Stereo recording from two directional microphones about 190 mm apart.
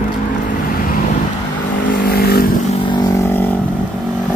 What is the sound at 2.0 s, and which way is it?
Vehicle, 55° left (ahead or behind).